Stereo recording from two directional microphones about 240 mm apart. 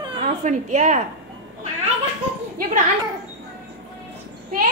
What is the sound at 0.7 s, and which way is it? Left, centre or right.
Speech, right.